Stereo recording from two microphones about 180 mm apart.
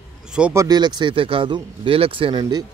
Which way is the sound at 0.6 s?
20° right (ahead or behind).